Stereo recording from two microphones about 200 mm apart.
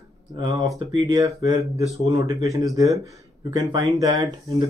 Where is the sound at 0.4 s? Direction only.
20° right (ahead or behind).